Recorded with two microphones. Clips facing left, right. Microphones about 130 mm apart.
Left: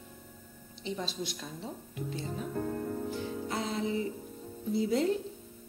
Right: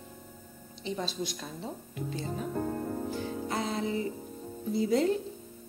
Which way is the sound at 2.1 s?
30° right (ahead or behind).